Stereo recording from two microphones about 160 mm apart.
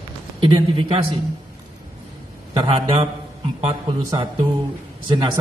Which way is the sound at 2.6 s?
40° right (ahead or behind).